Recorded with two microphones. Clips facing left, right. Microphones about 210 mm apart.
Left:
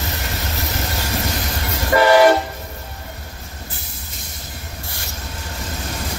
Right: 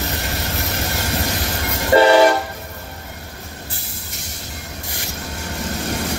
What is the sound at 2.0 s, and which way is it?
Train, 30° right (ahead or behind).